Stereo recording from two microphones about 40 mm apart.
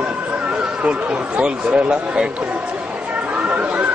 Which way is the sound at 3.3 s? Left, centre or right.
Right.